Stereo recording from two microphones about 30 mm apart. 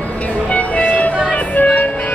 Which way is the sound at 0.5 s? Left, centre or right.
Left.